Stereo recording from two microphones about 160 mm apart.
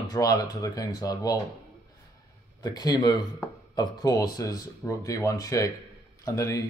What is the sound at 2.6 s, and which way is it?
Speech, 25° left (ahead or behind).